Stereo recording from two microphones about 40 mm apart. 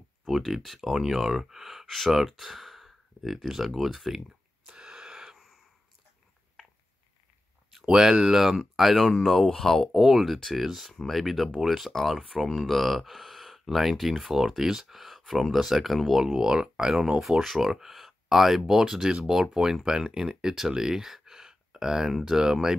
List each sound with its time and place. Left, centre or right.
0.3 s speech: centre
4.6 s wheeze: right
7.7 s speech: centre
10.0 s speech: centre